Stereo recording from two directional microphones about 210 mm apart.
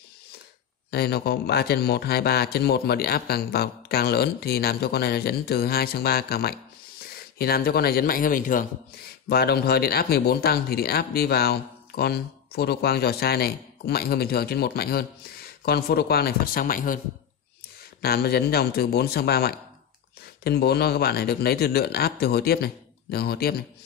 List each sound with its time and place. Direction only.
0.9 s speech: 50° left (ahead or behind)
18.0 s speech: 50° left (ahead or behind)